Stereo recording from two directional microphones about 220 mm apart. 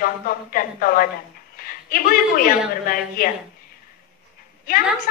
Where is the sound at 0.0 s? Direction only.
40° left (ahead or behind).